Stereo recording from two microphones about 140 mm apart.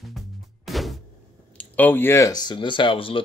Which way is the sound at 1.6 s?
15° left (ahead or behind).